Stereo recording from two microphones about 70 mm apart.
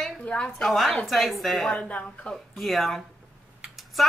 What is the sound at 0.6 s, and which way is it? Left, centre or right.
Speech, centre.